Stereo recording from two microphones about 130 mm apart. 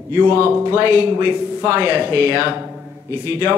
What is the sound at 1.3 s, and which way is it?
A man's voice, 10° right (ahead or behind).